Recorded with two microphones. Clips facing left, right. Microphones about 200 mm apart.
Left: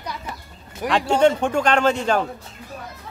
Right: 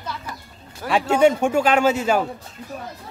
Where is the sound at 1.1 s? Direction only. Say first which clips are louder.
Right 1 dB; 10° right (ahead or behind).